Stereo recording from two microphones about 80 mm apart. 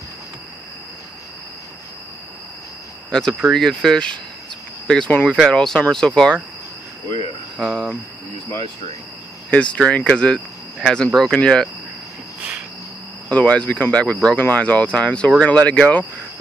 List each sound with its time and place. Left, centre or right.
3.1 s speech: centre
7.5 s cricket: centre
9.5 s speech: centre
13.3 s speech: centre